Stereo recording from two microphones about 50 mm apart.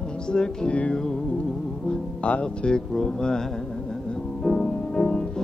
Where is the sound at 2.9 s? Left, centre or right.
Centre.